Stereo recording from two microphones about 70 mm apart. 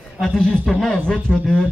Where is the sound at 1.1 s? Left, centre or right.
Centre.